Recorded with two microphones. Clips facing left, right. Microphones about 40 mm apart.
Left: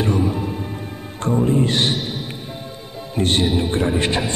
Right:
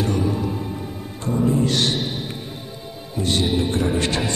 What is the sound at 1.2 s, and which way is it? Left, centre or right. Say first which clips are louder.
Speech: left 2 dB; left.